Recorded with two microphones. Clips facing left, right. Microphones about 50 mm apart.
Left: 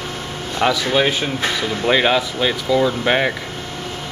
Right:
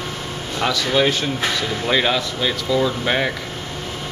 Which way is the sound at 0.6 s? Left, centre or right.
Centre.